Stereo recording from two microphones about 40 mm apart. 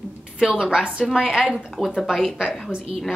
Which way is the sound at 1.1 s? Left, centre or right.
Centre.